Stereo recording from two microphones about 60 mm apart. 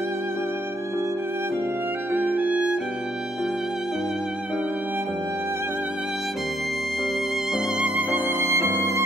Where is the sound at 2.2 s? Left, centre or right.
Right.